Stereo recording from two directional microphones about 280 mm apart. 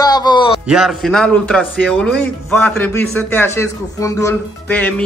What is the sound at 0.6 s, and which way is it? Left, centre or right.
A man's voice, centre.